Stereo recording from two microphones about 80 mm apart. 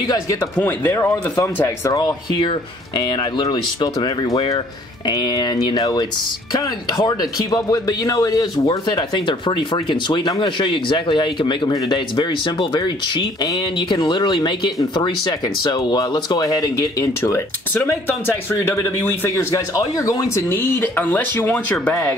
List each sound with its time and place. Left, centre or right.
0.6 s speech: left
1.3 s speech: left
3.0 s speech: left
5.8 s speech: left
8.6 s speech: left
13.7 s speech: left
15.0 s speech: left
18.0 s speech: left
18.8 s speech: left
20.4 s speech: left